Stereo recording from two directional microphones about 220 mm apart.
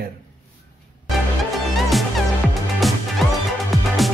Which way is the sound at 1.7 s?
Centre (ahead or behind).